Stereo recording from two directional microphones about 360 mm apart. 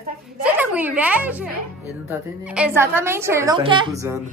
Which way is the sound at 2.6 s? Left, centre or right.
Centre.